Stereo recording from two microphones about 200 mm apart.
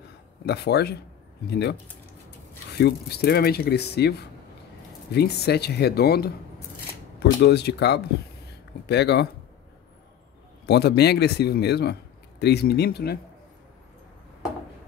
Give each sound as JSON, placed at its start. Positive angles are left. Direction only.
{"t": 0.5, "sound": "speech", "side_deg": 55}
{"t": 10.7, "sound": "speech", "side_deg": 55}